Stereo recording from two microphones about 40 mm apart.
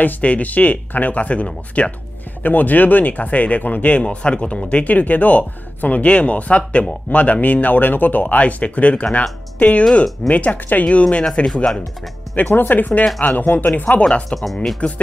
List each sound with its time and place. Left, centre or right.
0.0 s speech: left
2.4 s speech: left
11.4 s speech: centre
12.4 s speech: left
14.3 s speech: centre
14.8 s speech: left